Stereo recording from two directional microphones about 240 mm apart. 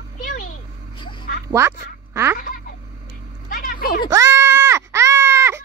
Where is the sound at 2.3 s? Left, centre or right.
Left.